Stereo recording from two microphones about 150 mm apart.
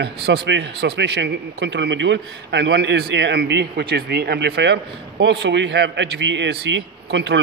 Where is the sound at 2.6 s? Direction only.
90° right.